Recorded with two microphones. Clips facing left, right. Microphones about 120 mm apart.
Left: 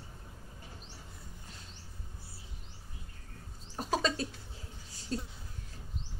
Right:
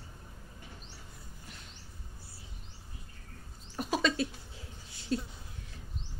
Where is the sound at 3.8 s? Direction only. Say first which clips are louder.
Right 2 dB; 30° left (ahead or behind).